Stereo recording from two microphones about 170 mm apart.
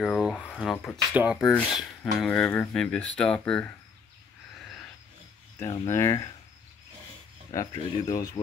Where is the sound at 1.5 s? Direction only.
5° left (ahead or behind).